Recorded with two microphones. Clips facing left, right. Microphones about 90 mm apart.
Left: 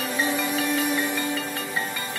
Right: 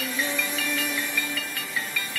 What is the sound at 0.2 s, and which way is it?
Music, 35° left (ahead or behind).